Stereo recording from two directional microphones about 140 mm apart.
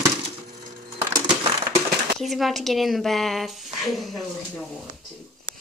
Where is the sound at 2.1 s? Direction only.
Centre (ahead or behind).